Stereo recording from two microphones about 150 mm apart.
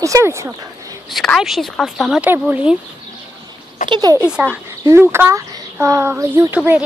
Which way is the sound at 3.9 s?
25° right (ahead or behind).